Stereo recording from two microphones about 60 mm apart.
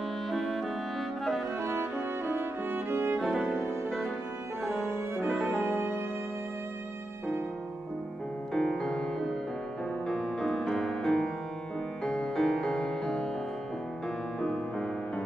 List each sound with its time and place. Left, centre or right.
0.3 s clarinet: centre
1.6 s music: right
3.2 s music: centre
5.7 s music: right
8.5 s music: centre
14.4 s music: centre